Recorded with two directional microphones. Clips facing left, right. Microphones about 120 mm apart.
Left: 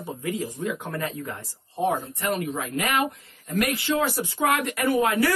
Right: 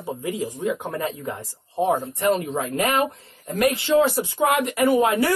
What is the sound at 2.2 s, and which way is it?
Speech, 30° right (ahead or behind).